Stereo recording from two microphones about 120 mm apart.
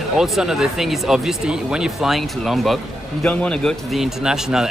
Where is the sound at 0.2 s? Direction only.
5° right (ahead or behind).